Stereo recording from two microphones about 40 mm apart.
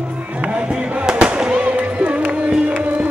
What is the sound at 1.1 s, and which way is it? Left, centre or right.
Fireworks, right.